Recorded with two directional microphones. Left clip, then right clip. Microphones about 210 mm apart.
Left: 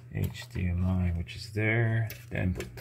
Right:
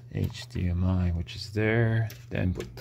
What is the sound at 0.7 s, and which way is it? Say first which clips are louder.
Speech: right 3 dB; 45° right (ahead or behind).